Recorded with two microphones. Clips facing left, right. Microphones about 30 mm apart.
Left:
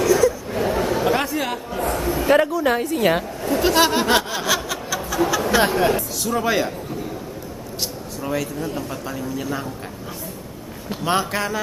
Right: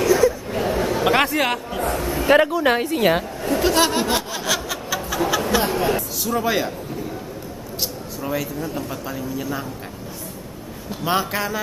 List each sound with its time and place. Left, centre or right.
0.0 s a sound: centre
0.6 s chatter: centre
1.0 s a sound: right
1.8 s a sound: centre
2.1 s a woman's voice: centre
3.0 s speech: centre
3.6 s speech: centre
4.8 s a sound: centre
5.7 s speech: centre
6.2 s speech: centre
8.2 s speech: centre
11.1 s speech: centre